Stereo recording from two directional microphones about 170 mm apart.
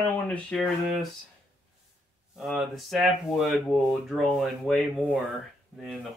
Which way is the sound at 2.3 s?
Centre (ahead or behind).